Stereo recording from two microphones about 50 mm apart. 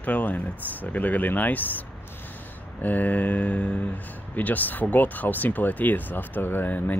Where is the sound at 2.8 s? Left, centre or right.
Left.